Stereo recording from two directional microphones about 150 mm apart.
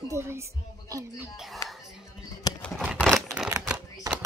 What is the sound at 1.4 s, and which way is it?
Speech, centre (ahead or behind).